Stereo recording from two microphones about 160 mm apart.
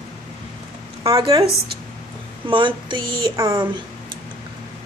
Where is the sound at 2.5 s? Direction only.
30° right (ahead or behind).